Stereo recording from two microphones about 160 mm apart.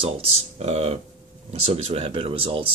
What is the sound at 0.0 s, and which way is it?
Speech, 40° right (ahead or behind).